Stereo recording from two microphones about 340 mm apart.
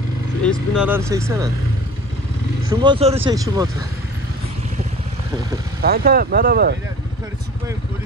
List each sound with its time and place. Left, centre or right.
0.4 s speech: centre
2.7 s speech: centre
5.8 s speech: right